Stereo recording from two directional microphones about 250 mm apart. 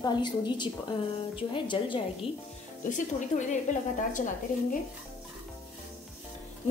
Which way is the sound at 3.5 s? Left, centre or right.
Left.